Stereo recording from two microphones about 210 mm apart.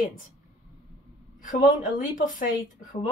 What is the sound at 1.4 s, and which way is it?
Speech, 40° left (ahead or behind).